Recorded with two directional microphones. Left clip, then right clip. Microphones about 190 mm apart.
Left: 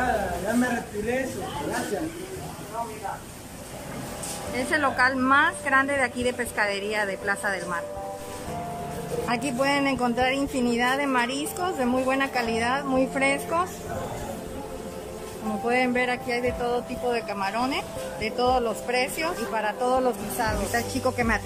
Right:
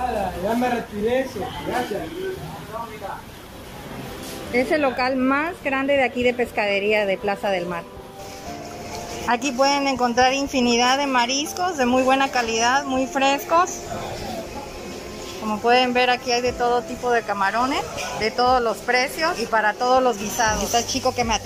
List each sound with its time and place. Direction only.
4.6 s a woman's voice: 10° right (ahead or behind)
9.3 s a man's voice: 5° left (ahead or behind)
15.6 s a man's voice: 5° left (ahead or behind)